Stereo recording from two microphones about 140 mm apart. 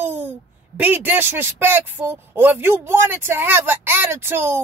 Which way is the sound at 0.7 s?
15° right (ahead or behind).